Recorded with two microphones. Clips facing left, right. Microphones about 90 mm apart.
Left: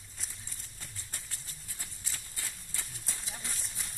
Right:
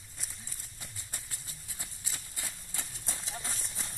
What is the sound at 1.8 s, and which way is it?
Horse, 15° right (ahead or behind).